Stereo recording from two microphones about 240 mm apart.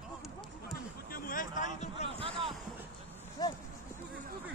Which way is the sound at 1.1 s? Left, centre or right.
Left.